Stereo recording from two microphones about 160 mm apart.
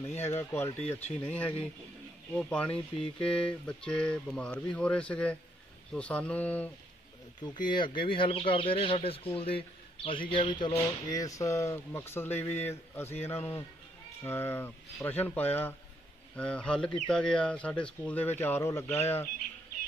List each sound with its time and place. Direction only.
0.1 s speech: 15° left (ahead or behind)
0.7 s speech: 40° left (ahead or behind)
1.2 s speech: 10° left (ahead or behind)
7.4 s speech: 30° left (ahead or behind)